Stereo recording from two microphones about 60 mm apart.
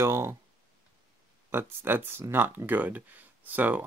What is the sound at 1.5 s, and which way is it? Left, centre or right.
Speech, right.